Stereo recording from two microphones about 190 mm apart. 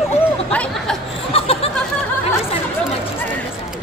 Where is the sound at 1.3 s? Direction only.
30° left (ahead or behind).